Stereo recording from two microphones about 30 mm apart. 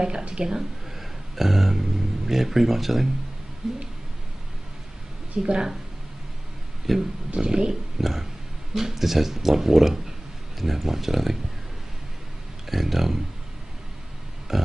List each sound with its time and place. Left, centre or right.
0.3 s speech: right
1.3 s speech: centre
5.4 s speech: right
6.9 s speech: centre
7.3 s speech: right
8.0 s speech: centre
12.6 s speech: centre
14.5 s pig: centre